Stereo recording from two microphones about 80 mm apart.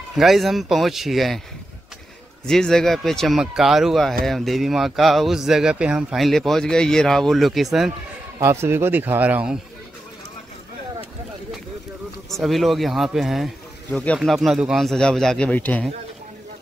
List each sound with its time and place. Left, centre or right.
0.1 s speech: centre
2.4 s speech: centre
6.1 s speech: centre
8.4 s speech: right
12.3 s speech: centre
15.5 s speech: centre